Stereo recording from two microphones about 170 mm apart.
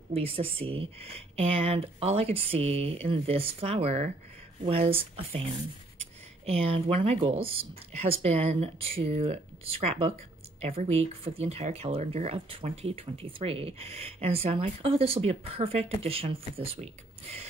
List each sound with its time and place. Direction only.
0.1 s speech: 35° right (ahead or behind)